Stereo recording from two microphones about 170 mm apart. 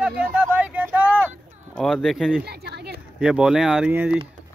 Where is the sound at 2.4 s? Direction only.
70° right (ahead or behind).